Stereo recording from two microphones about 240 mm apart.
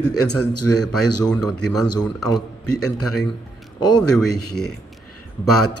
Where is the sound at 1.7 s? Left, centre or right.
Centre.